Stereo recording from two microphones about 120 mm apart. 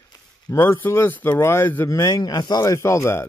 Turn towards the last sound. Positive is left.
turn(degrees=25)  # may be behind; listen again after turning